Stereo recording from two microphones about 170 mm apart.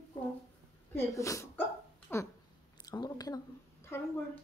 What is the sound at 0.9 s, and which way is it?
Speech, 20° left (ahead or behind).